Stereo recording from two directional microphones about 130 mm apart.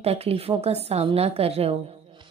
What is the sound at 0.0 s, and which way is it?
A woman's voice, 50° right (ahead or behind).